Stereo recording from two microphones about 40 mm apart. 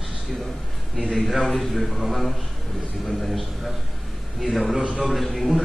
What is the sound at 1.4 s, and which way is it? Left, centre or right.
A man's voice, centre.